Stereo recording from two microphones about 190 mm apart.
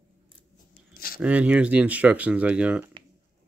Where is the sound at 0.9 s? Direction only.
50° left (ahead or behind).